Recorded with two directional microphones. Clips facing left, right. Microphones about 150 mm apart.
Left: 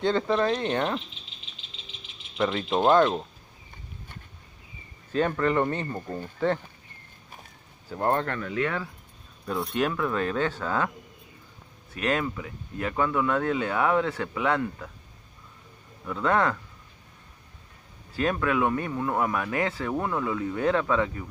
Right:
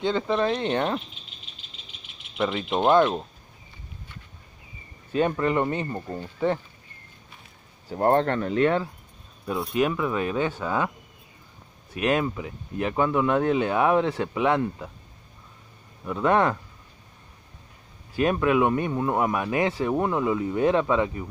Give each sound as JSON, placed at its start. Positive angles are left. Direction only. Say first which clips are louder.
{"t": 0.0, "sound": "speech", "louder": "even", "side_deg": -15}
{"t": 2.5, "sound": "speech", "louder": "right 1 dB", "side_deg": -15}
{"t": 5.1, "sound": "speech", "louder": "right 1 dB", "side_deg": -15}
{"t": 7.9, "sound": "speech", "louder": "right 5 dB", "side_deg": -30}
{"t": 9.6, "sound": "speech", "louder": "right 2 dB", "side_deg": -5}
{"t": 11.9, "sound": "speech", "louder": "right 3 dB", "side_deg": -15}
{"t": 16.1, "sound": "speech", "louder": "right 3 dB", "side_deg": -15}
{"t": 18.1, "sound": "speech", "louder": "right 4 dB", "side_deg": -15}